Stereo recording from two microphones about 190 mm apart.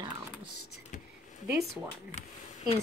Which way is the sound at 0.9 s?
45° left (ahead or behind).